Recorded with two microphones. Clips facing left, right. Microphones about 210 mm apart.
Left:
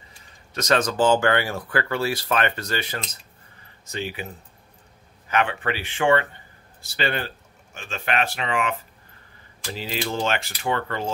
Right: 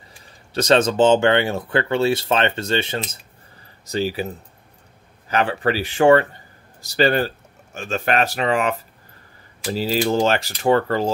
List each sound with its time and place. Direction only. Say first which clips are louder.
0.5 s speech: right 6 dB; 30° right (ahead or behind)
3.8 s speech: right 8 dB; 35° right (ahead or behind)
5.3 s speech: right 4 dB; 35° right (ahead or behind)